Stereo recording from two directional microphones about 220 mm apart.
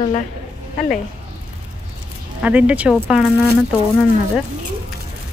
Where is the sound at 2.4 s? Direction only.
5° right (ahead or behind).